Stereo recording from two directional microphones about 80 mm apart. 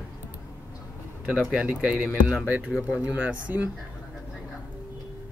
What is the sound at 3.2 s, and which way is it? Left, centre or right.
Speech, centre.